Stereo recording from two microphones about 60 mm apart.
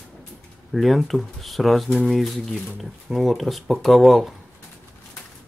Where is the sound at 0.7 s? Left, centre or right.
Centre.